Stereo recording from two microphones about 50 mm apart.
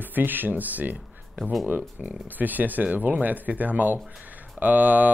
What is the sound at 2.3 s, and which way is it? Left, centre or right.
Speech, right.